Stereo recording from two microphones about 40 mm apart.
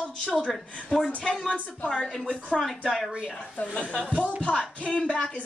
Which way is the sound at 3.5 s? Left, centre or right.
Left.